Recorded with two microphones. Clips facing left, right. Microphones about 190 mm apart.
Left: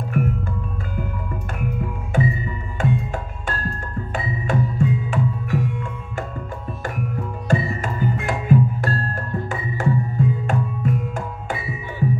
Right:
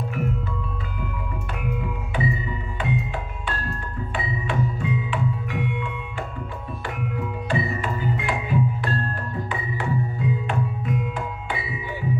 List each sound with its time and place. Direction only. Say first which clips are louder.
0.2 s music: left 6 dB; 50° left (ahead or behind)
1.6 s music: left 2 dB; 45° left (ahead or behind)
7.4 s music: left 4 dB; 45° left (ahead or behind)